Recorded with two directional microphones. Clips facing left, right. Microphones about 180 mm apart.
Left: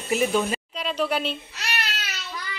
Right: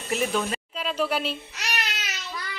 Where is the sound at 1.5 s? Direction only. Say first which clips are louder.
Even; 15° right (ahead or behind).